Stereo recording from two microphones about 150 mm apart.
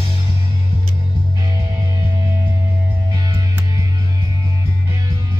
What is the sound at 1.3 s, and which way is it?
Music, 25° right (ahead or behind).